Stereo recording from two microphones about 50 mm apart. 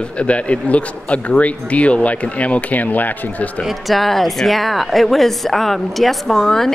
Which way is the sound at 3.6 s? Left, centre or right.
Centre.